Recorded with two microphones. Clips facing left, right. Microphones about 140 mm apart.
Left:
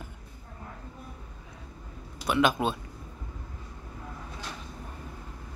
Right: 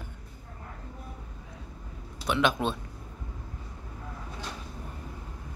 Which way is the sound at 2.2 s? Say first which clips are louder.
Left 1 dB; 5° left (ahead or behind).